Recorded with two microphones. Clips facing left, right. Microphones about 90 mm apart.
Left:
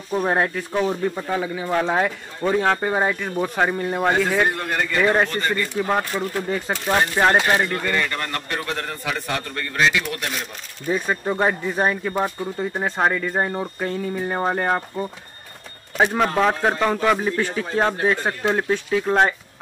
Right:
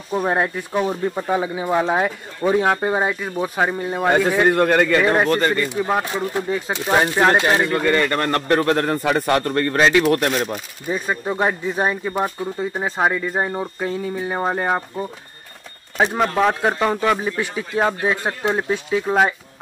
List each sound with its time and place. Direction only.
0.1 s speech: 5° right (ahead or behind)
4.5 s a man's voice: 65° right (ahead or behind)
5.0 s speech: 5° right (ahead or behind)
6.0 s speech: 20° right (ahead or behind)
7.8 s a man's voice: 45° right (ahead or behind)
10.9 s speech: 5° right (ahead or behind)
16.2 s speech: centre (ahead or behind)